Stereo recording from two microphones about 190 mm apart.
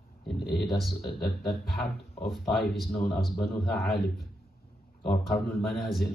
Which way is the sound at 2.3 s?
Centre (ahead or behind).